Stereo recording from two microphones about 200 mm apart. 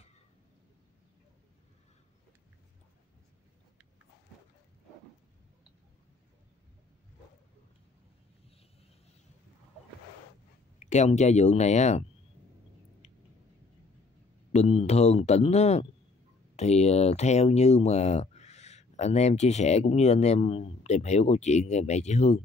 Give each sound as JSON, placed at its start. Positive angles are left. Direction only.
{"t": 10.8, "sound": "speech", "side_deg": 35}
{"t": 14.5, "sound": "speech", "side_deg": 30}